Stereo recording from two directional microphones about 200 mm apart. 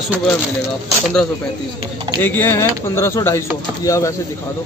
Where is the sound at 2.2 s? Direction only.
10° left (ahead or behind).